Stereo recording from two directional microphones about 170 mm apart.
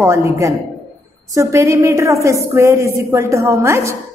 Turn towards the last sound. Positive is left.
turn(degrees=-15)  # may be behind; listen again after turning